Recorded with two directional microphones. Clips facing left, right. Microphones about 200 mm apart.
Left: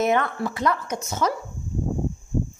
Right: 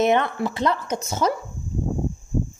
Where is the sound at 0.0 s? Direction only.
20° right (ahead or behind).